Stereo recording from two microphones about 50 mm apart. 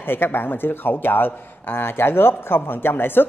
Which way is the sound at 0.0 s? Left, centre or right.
Left.